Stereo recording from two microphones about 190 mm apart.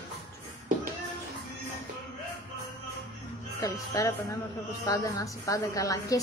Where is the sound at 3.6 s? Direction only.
15° left (ahead or behind).